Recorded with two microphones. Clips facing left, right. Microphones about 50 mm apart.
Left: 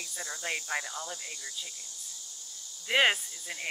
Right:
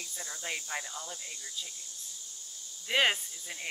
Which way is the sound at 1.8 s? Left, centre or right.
Left.